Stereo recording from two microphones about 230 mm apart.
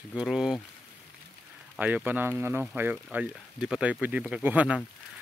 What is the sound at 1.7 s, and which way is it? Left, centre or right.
Speech, centre.